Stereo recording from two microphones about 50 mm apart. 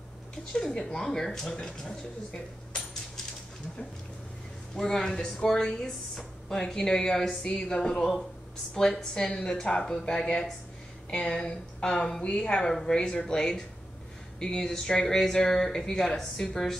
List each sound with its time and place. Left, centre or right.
0.5 s a woman's voice: centre
4.7 s a woman's voice: centre